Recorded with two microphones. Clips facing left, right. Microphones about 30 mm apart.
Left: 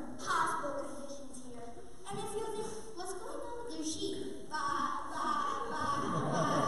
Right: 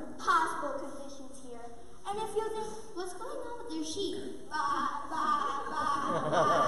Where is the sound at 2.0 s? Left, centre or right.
Centre.